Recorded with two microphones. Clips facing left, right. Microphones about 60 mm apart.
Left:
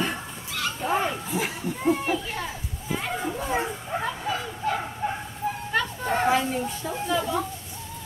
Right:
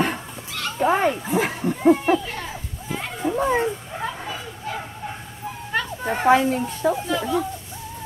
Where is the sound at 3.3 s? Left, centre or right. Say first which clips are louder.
Right 9 dB; right.